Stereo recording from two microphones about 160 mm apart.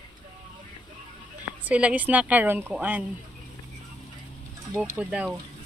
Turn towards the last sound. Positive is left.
turn(degrees=-10)  # may be behind; listen again after turning